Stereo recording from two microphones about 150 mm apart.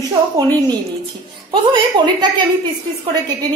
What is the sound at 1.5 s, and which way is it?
Speech, 35° right (ahead or behind).